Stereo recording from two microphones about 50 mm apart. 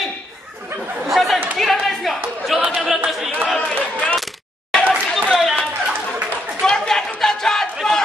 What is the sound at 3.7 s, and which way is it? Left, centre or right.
Speech, left.